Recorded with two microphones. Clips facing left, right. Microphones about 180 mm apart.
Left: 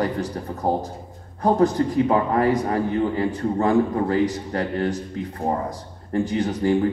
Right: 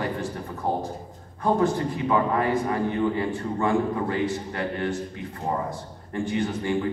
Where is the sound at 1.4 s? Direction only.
40° left (ahead or behind).